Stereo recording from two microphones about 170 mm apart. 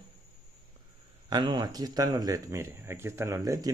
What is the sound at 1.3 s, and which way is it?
Speech, 25° right (ahead or behind).